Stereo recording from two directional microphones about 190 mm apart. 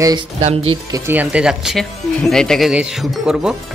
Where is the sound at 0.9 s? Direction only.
10° right (ahead or behind).